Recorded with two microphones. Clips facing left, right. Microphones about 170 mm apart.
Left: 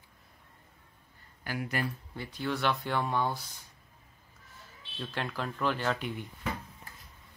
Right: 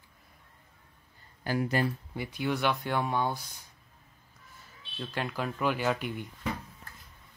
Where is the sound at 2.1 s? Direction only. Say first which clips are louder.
Right 3 dB; 15° right (ahead or behind).